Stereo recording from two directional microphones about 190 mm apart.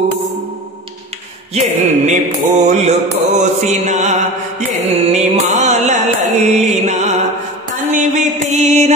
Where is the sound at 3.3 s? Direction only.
35° right (ahead or behind).